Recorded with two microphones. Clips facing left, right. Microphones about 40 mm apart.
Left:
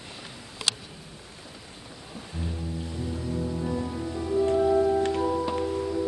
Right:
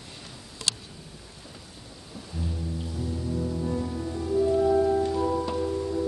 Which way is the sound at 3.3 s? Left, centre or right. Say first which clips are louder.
Even; centre.